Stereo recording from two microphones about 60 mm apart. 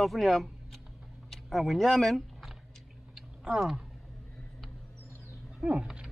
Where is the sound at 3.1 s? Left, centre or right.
Centre.